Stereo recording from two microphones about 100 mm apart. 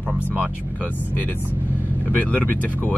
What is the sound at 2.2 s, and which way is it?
Speech, 15° left (ahead or behind).